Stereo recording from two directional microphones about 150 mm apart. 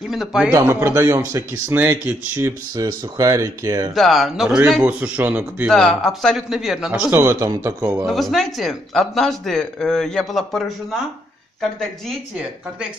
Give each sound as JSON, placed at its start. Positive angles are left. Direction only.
{"t": 0.1, "sound": "a man's voice", "side_deg": 0}
{"t": 0.5, "sound": "speech", "side_deg": -15}
{"t": 2.7, "sound": "speech", "side_deg": -25}
{"t": 3.9, "sound": "a man's voice", "side_deg": 0}
{"t": 5.7, "sound": "speech", "side_deg": 5}
{"t": 8.0, "sound": "a man's voice", "side_deg": 0}